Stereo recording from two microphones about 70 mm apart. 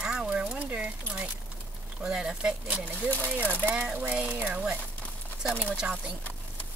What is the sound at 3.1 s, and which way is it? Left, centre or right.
Speech, centre.